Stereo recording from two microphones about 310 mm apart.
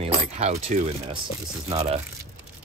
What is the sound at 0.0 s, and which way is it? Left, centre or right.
Coin, centre.